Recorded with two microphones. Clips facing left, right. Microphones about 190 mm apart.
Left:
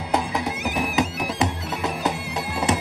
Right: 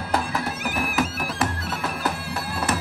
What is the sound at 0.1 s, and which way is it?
Music, 20° left (ahead or behind).